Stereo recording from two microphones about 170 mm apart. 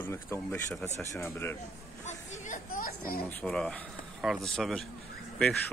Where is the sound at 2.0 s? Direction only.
45° left (ahead or behind).